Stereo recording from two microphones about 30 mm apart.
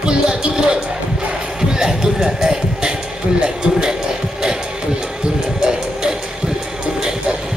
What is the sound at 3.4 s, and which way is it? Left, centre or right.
Speech, right.